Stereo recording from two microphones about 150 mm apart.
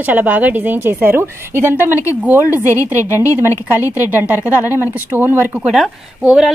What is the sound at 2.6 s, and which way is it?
A woman's voice, 20° left (ahead or behind).